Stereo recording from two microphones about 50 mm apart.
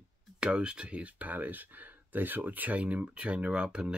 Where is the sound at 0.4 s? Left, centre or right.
Centre.